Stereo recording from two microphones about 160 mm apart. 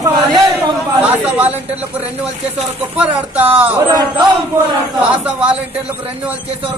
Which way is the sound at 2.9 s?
10° right (ahead or behind).